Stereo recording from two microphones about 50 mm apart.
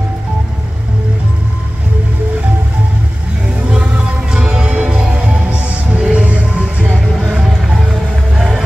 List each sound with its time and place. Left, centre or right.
3.7 s music: centre
7.4 s music: centre